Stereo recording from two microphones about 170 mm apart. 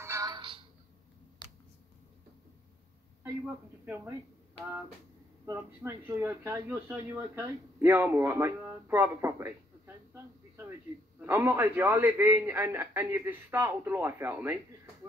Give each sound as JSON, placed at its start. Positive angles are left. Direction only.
{"t": 0.0, "sound": "music", "side_deg": -20}
{"t": 3.8, "sound": "speech", "side_deg": -10}
{"t": 5.4, "sound": "speech", "side_deg": -15}
{"t": 11.1, "sound": "speech", "side_deg": -15}